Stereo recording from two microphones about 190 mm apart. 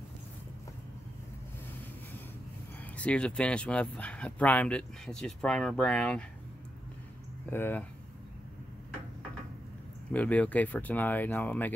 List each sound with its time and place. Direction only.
3.0 s speech: 5° left (ahead or behind)
7.4 s speech: 10° left (ahead or behind)
10.1 s speech: 10° left (ahead or behind)